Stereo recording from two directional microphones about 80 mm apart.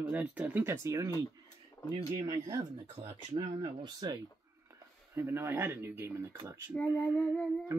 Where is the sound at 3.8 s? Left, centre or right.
Right.